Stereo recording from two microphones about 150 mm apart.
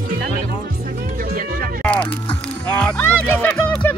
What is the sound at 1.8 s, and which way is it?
Music, 10° left (ahead or behind).